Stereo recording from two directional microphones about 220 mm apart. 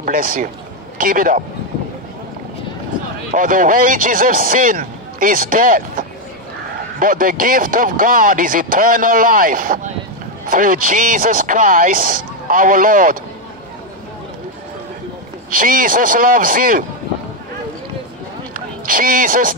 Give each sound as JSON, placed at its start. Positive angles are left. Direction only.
{"t": 0.0, "sound": "speech", "side_deg": -40}
{"t": 3.3, "sound": "speech", "side_deg": -35}
{"t": 15.5, "sound": "speech", "side_deg": -40}
{"t": 18.5, "sound": "a sound", "side_deg": -40}